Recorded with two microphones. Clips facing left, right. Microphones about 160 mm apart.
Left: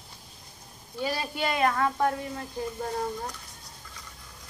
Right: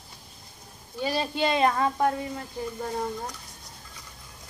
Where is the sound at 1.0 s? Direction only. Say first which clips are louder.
Right 3 dB; 25° right (ahead or behind).